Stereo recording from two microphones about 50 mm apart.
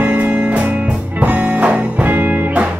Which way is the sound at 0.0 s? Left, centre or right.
Right.